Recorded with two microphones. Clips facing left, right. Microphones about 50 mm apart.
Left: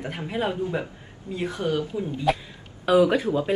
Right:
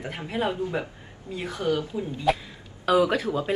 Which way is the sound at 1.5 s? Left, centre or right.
Left.